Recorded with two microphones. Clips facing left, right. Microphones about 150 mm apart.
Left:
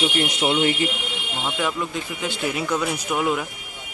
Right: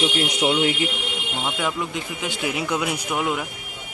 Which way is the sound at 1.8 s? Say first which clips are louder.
Left 1 dB; 15° right (ahead or behind).